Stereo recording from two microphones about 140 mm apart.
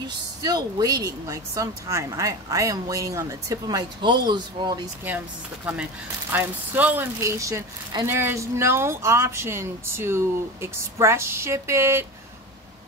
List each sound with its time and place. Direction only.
0.4 s speech: 30° right (ahead or behind)
5.7 s speech: 10° right (ahead or behind)